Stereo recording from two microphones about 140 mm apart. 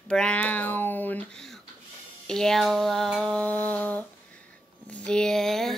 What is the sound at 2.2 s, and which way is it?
A woman's voice, 5° left (ahead or behind).